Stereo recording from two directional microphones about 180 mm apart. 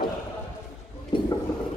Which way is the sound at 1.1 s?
25° left (ahead or behind).